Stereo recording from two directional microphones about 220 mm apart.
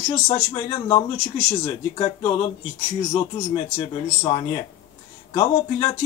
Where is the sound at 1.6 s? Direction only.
20° left (ahead or behind).